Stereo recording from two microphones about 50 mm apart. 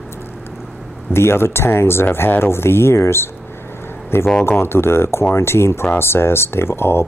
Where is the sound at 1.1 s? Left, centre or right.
Left.